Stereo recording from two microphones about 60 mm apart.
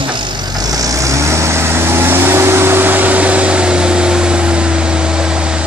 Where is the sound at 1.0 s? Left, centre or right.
Right; by 4.7 s centre.